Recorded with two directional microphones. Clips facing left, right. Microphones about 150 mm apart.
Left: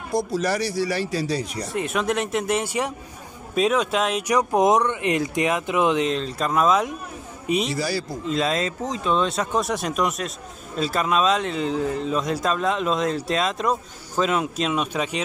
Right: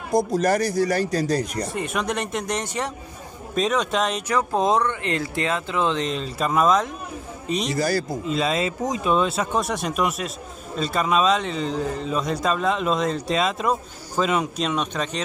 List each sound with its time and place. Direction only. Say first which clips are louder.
0.1 s speech: right 3 dB; 50° right (ahead or behind)
1.7 s speech: left 2 dB; centre (ahead or behind)
4.3 s speech: left 4 dB; 15° left (ahead or behind)
6.0 s a man's voice: left 1 dB; centre (ahead or behind)
7.7 s speech: right 3 dB; 50° right (ahead or behind)
8.3 s speech: left 1 dB; centre (ahead or behind)